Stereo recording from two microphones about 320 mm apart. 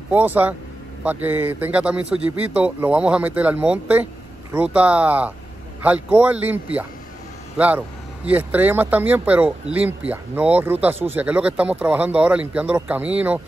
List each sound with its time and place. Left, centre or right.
0.1 s a man's voice: centre